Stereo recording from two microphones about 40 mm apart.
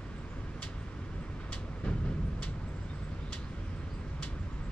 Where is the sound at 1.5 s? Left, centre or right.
Left.